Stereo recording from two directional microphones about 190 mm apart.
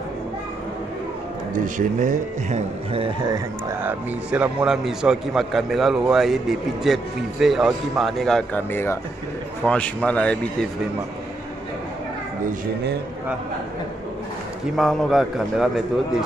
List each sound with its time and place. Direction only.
1.5 s speech: 45° right (ahead or behind); by 3.3 s 25° right (ahead or behind)
3.8 s a man's voice: 5° right (ahead or behind)
14.8 s a man's voice: centre (ahead or behind)